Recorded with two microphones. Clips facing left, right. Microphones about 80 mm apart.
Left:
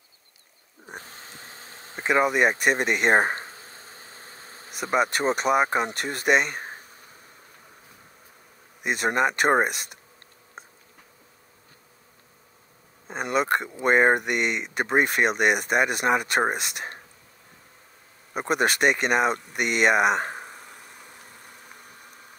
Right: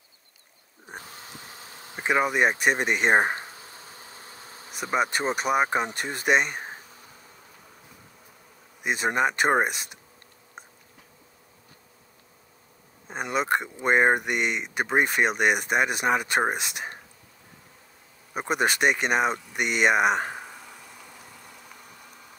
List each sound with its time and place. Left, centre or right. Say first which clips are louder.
0.9 s a sound: even; left
2.0 s speech: left 2 dB; centre
3.4 s bee: even; left
4.9 s speech: left 2 dB; centre
8.8 s speech: left 1 dB; centre
13.1 s speech: left 2 dB; centre
18.3 s speech: left 1 dB; centre
21.4 s vehicle: even; left